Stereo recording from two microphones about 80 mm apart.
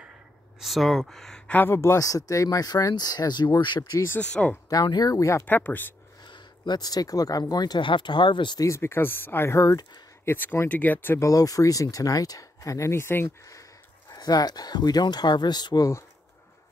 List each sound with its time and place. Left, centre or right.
0.6 s speech: centre
1.5 s speech: left
1.8 s speech: left
4.2 s speech: centre
5.0 s speech: left
5.5 s speech: left
6.2 s speech: left
8.5 s speech: left
10.3 s speech: left
11.1 s speech: left
14.1 s speech: left